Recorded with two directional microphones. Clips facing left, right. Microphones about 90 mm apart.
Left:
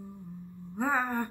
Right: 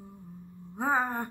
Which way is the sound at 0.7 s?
25° right (ahead or behind).